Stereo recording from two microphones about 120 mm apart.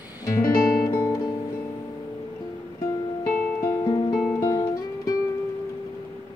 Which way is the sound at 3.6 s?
30° left (ahead or behind).